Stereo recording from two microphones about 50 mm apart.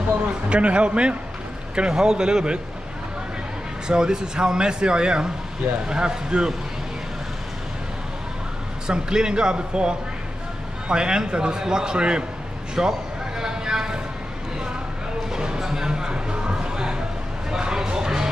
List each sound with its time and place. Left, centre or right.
0.5 s a man's voice: right
3.8 s a man's voice: centre
8.8 s a man's voice: centre
12.8 s a man's voice: centre
13.4 s a sound: centre
15.3 s music: centre